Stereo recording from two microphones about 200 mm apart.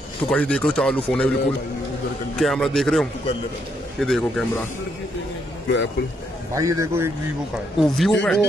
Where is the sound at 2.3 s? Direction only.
5° left (ahead or behind).